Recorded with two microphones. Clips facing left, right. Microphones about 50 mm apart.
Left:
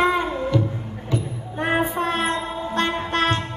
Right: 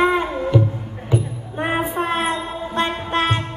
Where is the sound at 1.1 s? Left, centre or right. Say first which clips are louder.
Right 4 dB; centre.